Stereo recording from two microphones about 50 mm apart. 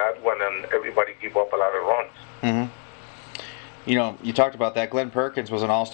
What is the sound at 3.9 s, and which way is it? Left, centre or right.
Speech, centre.